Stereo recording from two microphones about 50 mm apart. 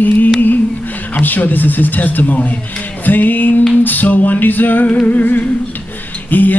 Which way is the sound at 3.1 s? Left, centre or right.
Left.